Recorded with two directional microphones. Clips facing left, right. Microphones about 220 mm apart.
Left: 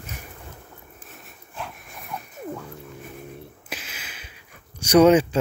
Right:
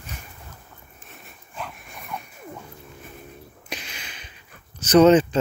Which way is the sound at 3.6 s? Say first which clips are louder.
Right 1 dB; 5° left (ahead or behind).